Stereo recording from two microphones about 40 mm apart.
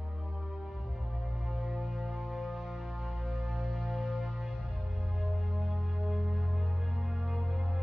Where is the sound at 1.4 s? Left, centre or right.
Centre.